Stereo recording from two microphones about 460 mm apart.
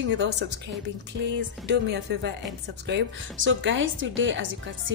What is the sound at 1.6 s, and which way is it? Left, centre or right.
Speech, right.